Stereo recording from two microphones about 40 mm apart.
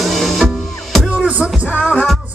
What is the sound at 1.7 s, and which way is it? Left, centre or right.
Music, left.